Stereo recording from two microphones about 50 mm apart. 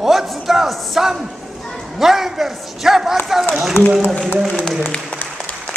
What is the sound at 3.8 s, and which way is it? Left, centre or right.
Speech, left.